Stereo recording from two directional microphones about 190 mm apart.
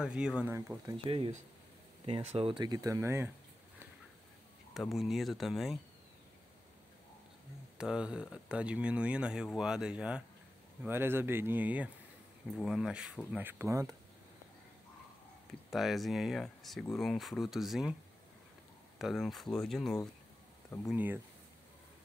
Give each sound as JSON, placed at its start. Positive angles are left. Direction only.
{"t": 0.0, "sound": "speech", "side_deg": -5}
{"t": 0.6, "sound": "speech", "side_deg": -15}
{"t": 4.7, "sound": "speech", "side_deg": 0}
{"t": 7.7, "sound": "speech", "side_deg": -5}
{"t": 15.7, "sound": "speech", "side_deg": 0}
{"t": 18.9, "sound": "speech", "side_deg": 0}
{"t": 20.9, "sound": "speech", "side_deg": -10}